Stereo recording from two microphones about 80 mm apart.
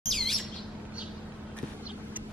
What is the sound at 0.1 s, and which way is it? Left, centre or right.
Bird, centre.